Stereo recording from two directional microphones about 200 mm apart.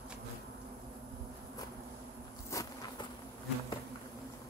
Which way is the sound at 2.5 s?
15° left (ahead or behind).